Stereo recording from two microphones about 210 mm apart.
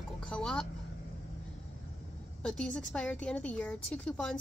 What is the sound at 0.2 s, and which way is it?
Speech, 5° left (ahead or behind).